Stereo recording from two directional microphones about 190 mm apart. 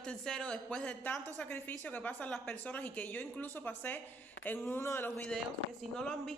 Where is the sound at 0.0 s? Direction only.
5° left (ahead or behind).